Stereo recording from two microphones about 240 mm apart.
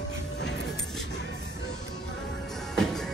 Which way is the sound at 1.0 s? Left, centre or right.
Left.